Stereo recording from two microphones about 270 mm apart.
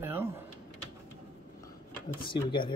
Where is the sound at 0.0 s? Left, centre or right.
Centre.